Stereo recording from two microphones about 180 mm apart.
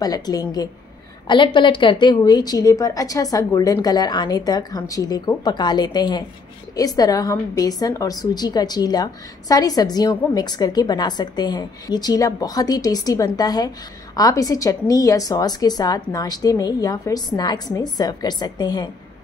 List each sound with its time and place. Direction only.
0.0 s a woman's voice: 20° left (ahead or behind)